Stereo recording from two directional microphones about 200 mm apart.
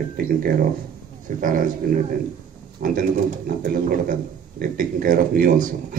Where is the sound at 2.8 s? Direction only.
45° right (ahead or behind).